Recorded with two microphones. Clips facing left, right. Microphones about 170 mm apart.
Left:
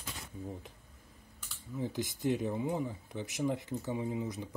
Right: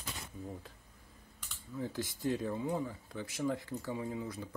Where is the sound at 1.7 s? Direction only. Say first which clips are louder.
Left 2 dB; 15° left (ahead or behind).